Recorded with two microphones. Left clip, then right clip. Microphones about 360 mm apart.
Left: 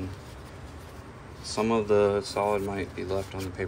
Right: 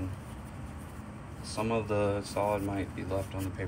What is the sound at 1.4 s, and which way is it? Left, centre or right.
Speech, centre.